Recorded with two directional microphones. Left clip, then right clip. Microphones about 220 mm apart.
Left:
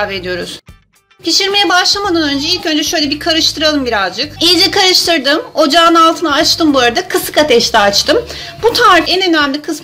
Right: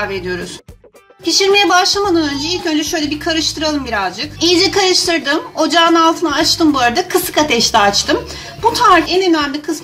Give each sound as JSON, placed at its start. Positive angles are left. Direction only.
{"t": 0.0, "sound": "a woman's voice", "side_deg": 30}